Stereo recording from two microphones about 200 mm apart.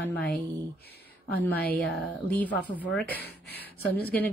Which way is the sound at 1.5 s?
5° left (ahead or behind).